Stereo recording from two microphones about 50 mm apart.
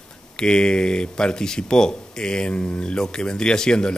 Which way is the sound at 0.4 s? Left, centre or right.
Centre.